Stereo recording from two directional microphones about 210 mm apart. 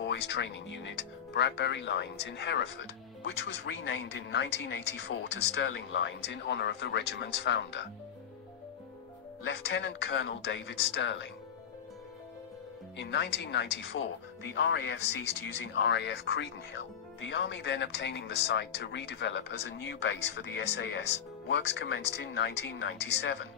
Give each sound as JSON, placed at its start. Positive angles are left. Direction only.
{"t": 0.0, "sound": "speech", "side_deg": 60}
{"t": 9.5, "sound": "speech", "side_deg": 55}
{"t": 12.9, "sound": "speech", "side_deg": 55}